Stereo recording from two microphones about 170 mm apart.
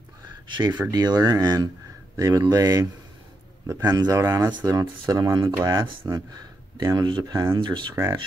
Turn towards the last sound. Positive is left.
turn(degrees=-25)  # may be behind; listen again after turning